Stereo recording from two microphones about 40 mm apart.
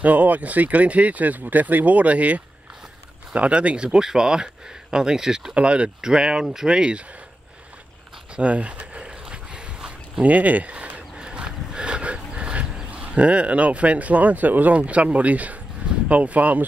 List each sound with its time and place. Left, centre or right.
0.0 s speech: right
4.0 s speech: centre
5.5 s speech: right
8.4 s a sound: right
10.2 s speech: right
11.1 s dog: right
12.9 s speech: right